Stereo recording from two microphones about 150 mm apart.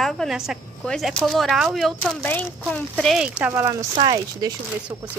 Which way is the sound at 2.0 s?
10° left (ahead or behind).